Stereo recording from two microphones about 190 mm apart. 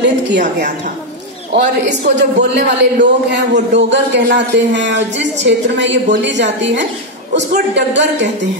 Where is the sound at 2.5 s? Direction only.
65° right (ahead or behind).